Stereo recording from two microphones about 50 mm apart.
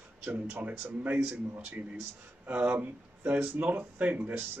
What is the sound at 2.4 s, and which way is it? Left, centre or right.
Speech, right.